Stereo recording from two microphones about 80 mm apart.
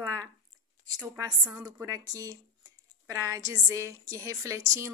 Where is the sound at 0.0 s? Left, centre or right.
Right.